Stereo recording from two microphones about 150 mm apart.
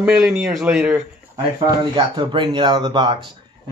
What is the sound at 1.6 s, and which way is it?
Speech, 30° right (ahead or behind).